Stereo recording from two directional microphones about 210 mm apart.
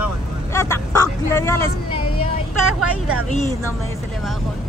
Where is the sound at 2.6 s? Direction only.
90° right.